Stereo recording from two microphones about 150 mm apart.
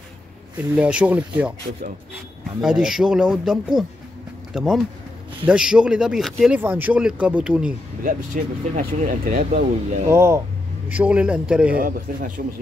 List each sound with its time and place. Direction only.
0.7 s speech: 10° right (ahead or behind)
2.6 s speech: 5° right (ahead or behind)
8.3 s speech: 70° right (ahead or behind)
8.7 s speech: 55° right (ahead or behind)
10.0 s speech: 20° right (ahead or behind)
11.8 s speech: 60° right (ahead or behind)